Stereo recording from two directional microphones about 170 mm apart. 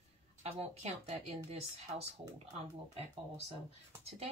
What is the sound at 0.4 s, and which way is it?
Speech, 40° right (ahead or behind).